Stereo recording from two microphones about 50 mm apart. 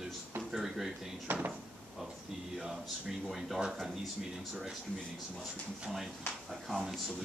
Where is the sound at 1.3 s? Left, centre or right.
Right.